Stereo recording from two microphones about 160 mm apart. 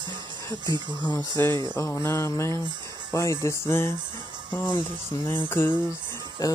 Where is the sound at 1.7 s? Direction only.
15° left (ahead or behind).